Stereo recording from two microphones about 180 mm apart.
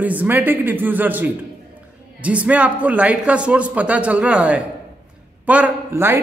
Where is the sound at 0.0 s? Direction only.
10° right (ahead or behind).